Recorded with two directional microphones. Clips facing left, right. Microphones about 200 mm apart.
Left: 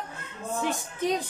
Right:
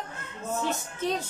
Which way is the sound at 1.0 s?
15° left (ahead or behind).